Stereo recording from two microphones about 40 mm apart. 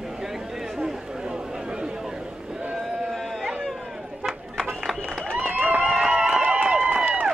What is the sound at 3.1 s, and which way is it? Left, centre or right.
Sheep, centre.